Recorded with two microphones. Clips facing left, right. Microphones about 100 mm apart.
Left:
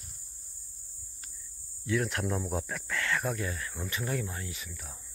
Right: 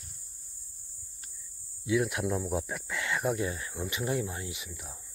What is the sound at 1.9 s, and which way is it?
Speech, 5° right (ahead or behind).